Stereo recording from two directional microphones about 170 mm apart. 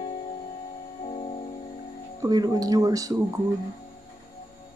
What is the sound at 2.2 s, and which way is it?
Speech, 20° right (ahead or behind).